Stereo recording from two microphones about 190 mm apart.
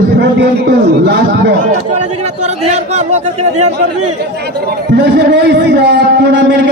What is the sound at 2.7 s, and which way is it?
Speech, 35° right (ahead or behind).